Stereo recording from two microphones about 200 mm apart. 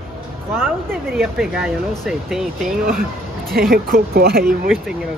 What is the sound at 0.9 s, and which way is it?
Speech, centre (ahead or behind).